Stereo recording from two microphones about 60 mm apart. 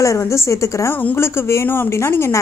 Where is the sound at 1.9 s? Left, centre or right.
Left.